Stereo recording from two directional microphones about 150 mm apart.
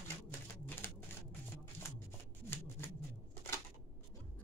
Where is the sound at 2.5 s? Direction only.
15° left (ahead or behind).